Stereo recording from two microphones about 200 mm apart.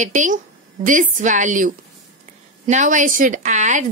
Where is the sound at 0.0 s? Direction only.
40° right (ahead or behind).